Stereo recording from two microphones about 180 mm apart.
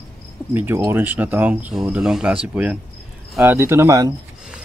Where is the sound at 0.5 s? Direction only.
10° right (ahead or behind).